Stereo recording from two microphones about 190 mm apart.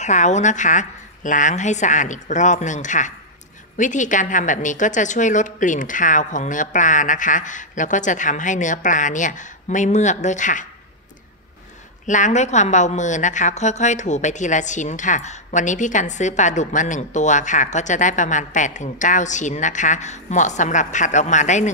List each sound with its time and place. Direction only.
0.0 s a woman's voice: 40° left (ahead or behind)
12.1 s a woman's voice: 40° left (ahead or behind)